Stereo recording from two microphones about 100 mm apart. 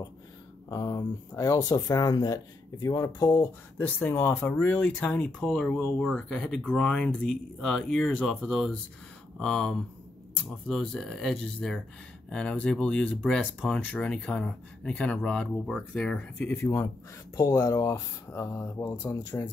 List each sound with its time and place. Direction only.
0.7 s speech: 35° left (ahead or behind)
3.7 s speech: 20° left (ahead or behind)
16.6 s speech: 25° left (ahead or behind)